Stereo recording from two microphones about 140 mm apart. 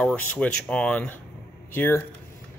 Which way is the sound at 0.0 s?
10° left (ahead or behind).